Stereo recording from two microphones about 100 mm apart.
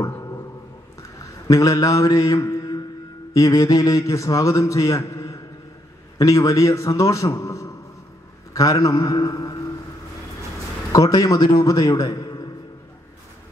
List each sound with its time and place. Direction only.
1.5 s a man's voice: 35° left (ahead or behind)
10.9 s a man's voice: 35° left (ahead or behind)